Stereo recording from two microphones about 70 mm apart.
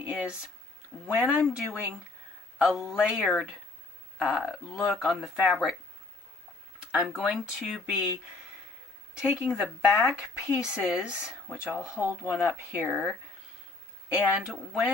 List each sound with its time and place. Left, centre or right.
0.0 s a sound: centre
1.0 s speech: centre
2.6 s speech: centre
7.0 s speech: centre
9.2 s speech: centre
14.0 s speech: centre